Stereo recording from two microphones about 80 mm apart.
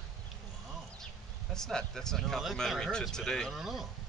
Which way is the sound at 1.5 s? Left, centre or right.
Centre.